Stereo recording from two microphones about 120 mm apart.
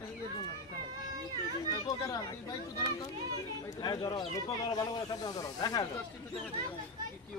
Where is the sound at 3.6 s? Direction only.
35° left (ahead or behind).